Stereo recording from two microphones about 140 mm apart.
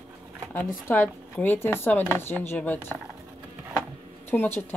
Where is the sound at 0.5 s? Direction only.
15° left (ahead or behind).